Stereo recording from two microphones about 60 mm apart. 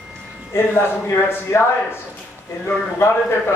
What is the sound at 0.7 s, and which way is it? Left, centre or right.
A man's voice, left.